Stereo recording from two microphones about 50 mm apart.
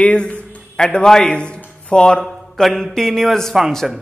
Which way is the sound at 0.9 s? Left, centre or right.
Centre.